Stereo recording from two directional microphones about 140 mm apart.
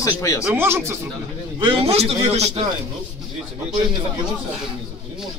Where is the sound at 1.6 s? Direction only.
40° right (ahead or behind).